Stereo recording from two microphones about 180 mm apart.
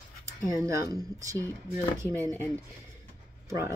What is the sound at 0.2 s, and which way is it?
Speech, 15° right (ahead or behind).